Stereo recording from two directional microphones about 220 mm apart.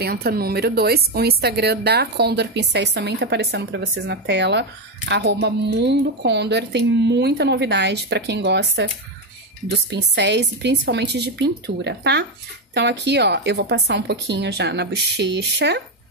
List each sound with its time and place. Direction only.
0.0 s a woman's voice: 45° right (ahead or behind)